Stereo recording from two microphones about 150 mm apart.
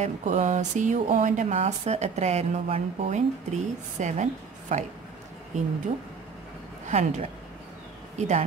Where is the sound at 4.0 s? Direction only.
55° right (ahead or behind).